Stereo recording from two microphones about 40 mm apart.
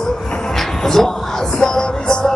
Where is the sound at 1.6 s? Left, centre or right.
Centre.